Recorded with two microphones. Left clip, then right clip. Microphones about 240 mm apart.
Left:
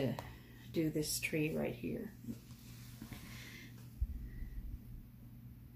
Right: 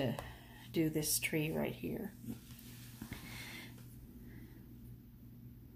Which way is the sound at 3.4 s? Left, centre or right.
Right.